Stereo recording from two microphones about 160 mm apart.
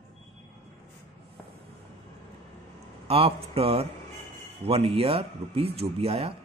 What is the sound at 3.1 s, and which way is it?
Speech, 35° right (ahead or behind).